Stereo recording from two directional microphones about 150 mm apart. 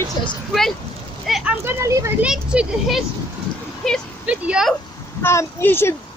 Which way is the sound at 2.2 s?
5° right (ahead or behind).